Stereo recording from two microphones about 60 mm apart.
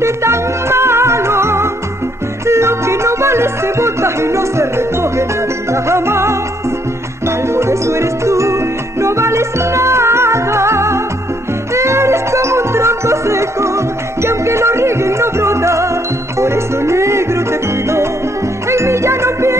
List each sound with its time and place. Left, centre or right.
0.0 s music: right